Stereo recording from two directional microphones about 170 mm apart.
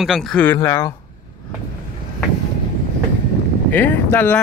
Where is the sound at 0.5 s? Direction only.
15° left (ahead or behind).